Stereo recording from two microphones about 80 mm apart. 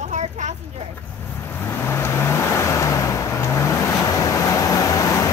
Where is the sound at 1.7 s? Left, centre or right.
Left.